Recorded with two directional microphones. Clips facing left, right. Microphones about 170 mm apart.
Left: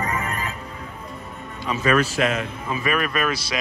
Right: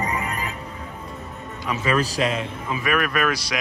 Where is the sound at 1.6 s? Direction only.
15° right (ahead or behind).